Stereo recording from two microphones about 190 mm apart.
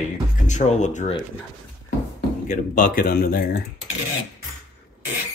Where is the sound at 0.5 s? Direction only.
40° left (ahead or behind).